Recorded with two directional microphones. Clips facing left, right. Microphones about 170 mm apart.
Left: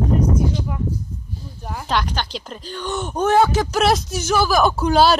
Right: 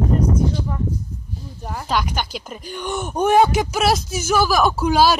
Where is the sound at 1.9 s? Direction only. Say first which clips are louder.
Even; 5° right (ahead or behind).